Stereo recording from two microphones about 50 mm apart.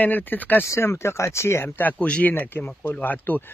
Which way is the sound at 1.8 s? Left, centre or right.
Left.